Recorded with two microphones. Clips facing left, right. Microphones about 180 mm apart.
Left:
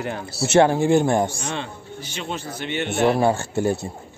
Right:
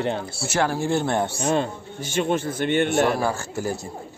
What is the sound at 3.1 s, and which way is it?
Speech, 25° left (ahead or behind).